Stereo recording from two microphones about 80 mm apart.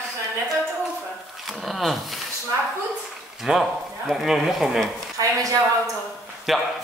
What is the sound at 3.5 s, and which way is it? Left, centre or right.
A man's voice, centre.